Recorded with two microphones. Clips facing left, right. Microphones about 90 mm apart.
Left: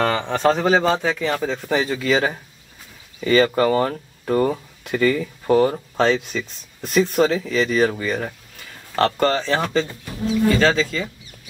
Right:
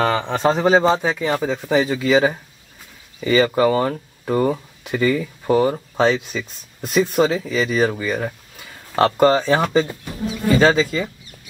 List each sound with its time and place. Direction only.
0.0 s a man's voice: 15° right (ahead or behind)